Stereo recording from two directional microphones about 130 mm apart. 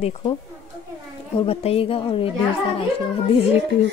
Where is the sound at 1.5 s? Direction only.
50° left (ahead or behind).